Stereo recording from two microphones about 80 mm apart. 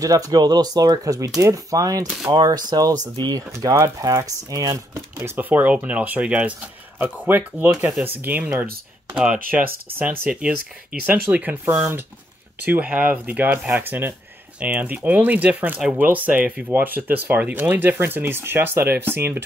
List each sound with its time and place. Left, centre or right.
0.0 s speech: right